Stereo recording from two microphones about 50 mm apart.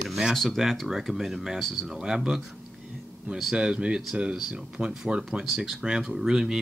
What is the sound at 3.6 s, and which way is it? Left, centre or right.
Speech, centre.